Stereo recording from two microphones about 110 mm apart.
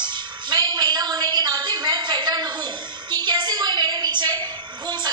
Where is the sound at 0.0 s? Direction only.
45° right (ahead or behind).